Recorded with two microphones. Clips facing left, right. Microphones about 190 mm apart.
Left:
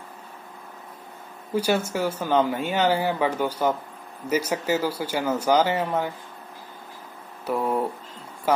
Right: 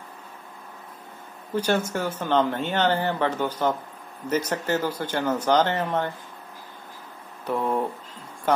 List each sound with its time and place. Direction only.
1.5 s speech: 10° left (ahead or behind)
7.4 s speech: 5° left (ahead or behind)